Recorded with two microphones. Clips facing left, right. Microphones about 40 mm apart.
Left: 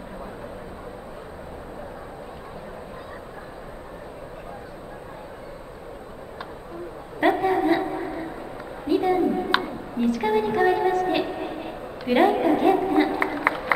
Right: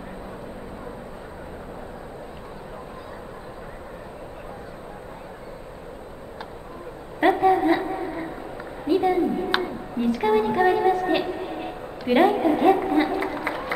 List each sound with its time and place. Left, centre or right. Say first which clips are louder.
7.2 s a sound: right 2 dB; centre
10.1 s a woman's voice: right 3 dB; centre
13.5 s crowd: left 5 dB; centre